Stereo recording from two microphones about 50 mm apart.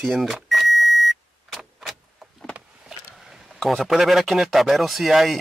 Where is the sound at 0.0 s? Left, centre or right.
Centre.